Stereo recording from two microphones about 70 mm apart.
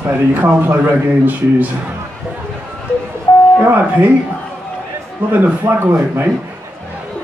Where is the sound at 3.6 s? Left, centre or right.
Right.